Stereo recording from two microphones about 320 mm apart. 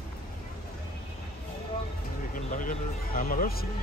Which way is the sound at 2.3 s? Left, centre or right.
Left.